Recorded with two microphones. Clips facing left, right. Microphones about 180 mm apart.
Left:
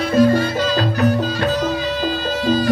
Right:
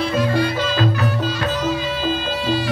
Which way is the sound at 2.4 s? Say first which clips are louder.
Left 6 dB; 40° left (ahead or behind).